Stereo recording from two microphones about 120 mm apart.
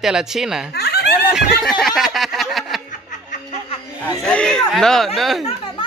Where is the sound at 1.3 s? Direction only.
Centre (ahead or behind).